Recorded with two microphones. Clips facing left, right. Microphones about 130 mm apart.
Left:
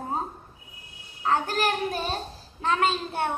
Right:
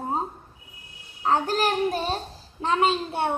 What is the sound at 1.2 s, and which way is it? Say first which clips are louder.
A woman's voice: right 2 dB; 25° right (ahead or behind).